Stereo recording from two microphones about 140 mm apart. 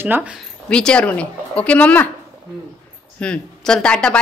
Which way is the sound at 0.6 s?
5° left (ahead or behind).